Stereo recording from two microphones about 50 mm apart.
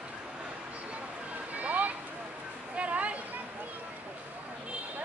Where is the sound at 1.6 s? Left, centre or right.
Right.